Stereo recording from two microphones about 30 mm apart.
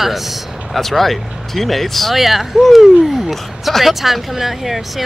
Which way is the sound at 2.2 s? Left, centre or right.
Centre.